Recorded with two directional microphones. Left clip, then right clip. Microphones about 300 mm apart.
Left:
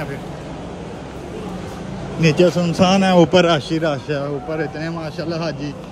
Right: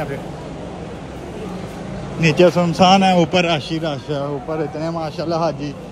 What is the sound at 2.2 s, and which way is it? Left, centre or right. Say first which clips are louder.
Speech: right 2 dB; centre.